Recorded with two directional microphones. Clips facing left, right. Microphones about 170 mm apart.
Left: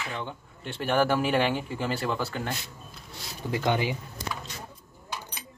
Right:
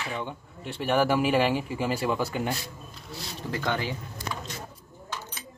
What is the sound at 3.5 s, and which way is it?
Speech, 15° left (ahead or behind).